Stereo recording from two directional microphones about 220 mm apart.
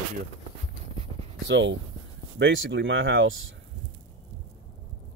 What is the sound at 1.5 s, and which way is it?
Speech, 55° right (ahead or behind).